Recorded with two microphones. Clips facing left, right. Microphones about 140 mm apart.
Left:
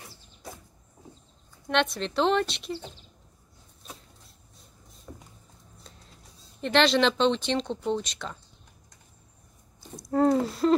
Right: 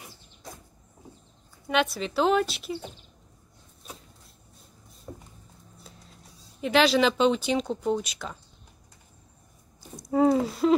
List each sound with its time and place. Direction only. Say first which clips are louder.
1.7 s speech: even; 5° right (ahead or behind)
3.8 s vehicle: right 1 dB; centre (ahead or behind)
5.1 s a sound: right 3 dB; 20° right (ahead or behind)
5.9 s speech: right 1 dB; centre (ahead or behind)
9.9 s speech: right 1 dB; centre (ahead or behind)